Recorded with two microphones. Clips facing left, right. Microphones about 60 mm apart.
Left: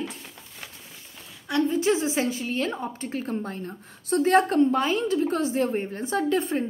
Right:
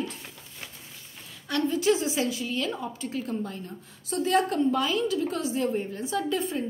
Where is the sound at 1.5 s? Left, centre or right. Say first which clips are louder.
Left 2 dB; left.